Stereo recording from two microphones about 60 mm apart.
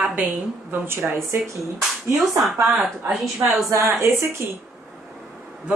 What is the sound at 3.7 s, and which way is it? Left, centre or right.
Speech, right.